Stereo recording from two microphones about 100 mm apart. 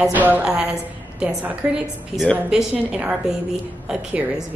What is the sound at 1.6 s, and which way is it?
A woman's voice, 5° right (ahead or behind).